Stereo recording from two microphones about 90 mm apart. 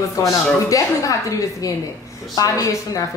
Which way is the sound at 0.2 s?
35° left (ahead or behind).